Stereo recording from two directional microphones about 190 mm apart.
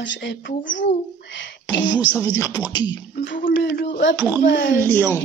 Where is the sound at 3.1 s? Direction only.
70° left (ahead or behind).